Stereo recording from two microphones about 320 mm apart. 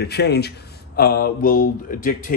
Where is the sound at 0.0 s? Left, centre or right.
Left.